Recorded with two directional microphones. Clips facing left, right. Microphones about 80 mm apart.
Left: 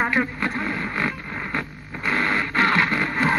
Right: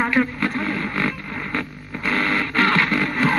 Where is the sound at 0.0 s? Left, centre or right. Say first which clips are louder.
Right 2 dB; centre.